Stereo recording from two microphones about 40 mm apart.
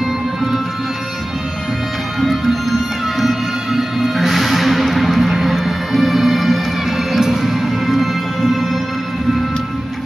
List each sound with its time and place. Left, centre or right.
0.0 s music: centre
2.1 s music: centre